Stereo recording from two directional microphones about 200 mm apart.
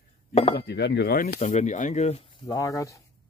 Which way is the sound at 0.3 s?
30° left (ahead or behind).